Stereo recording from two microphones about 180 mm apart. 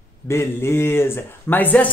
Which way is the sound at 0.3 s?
15° left (ahead or behind).